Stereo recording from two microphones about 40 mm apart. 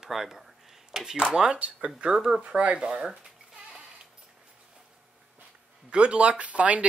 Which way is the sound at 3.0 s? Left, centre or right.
Right.